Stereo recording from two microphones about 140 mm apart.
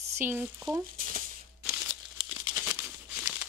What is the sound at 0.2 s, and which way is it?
Speech, 15° right (ahead or behind).